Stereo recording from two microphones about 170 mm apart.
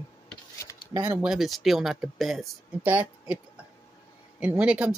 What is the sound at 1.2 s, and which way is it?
Speech, centre (ahead or behind).